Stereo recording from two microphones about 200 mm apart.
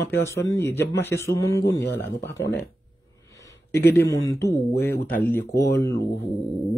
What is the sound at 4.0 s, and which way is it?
Speech, 65° left (ahead or behind).